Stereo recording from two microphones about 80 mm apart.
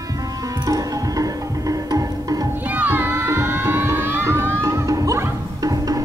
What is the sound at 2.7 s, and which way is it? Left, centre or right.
Music, right.